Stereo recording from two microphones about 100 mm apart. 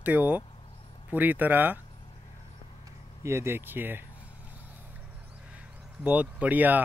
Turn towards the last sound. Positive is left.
turn(degrees=-15)  # may be behind; listen again after turning